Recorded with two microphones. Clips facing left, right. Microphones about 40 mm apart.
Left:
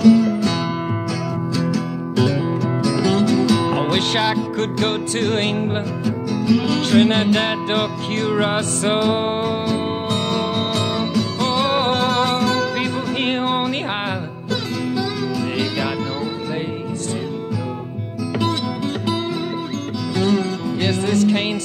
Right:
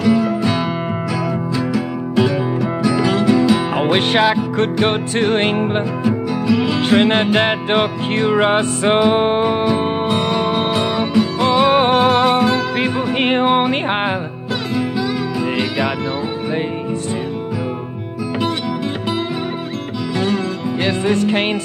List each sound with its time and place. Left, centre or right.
0.0 s music: centre
1.6 s music: centre
20.8 s music: right